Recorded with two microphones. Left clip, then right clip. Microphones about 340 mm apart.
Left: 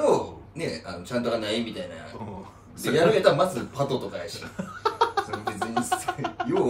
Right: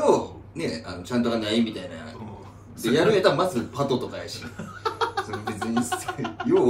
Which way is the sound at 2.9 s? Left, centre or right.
Centre.